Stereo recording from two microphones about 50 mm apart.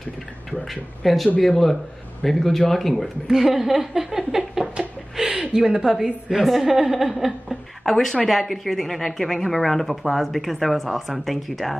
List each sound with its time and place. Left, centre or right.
0.5 s speech: centre
3.3 s speech: centre
4.7 s chuckle: centre
5.6 s a woman's voice: centre